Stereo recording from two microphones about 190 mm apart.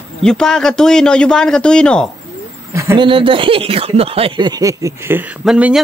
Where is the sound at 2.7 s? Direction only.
15° right (ahead or behind).